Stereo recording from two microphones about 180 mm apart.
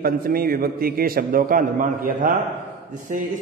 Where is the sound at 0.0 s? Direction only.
55° right (ahead or behind).